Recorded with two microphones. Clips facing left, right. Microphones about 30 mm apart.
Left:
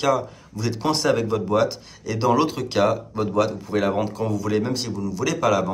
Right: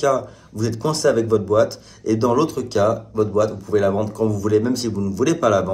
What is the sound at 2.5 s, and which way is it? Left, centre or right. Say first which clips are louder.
Speech: right 2 dB; left.